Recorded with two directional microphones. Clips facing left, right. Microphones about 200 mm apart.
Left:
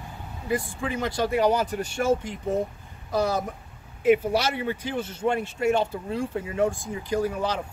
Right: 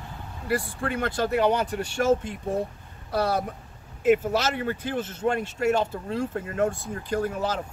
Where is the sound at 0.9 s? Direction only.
10° left (ahead or behind).